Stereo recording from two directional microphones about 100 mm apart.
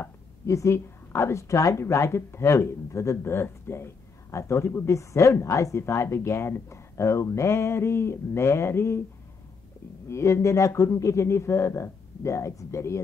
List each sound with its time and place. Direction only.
0.0 s a woman's voice: 30° left (ahead or behind)
10.0 s a woman's voice: 30° left (ahead or behind)